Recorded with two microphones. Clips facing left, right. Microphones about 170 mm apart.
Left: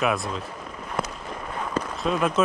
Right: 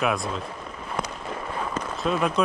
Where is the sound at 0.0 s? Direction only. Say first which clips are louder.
Left 1 dB; centre (ahead or behind).